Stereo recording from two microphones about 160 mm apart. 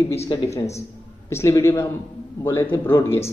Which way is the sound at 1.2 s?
20° left (ahead or behind).